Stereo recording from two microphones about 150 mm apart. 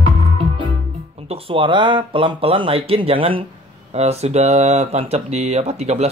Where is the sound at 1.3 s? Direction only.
35° right (ahead or behind).